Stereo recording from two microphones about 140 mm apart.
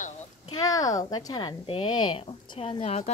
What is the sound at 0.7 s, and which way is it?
Speech, 25° left (ahead or behind).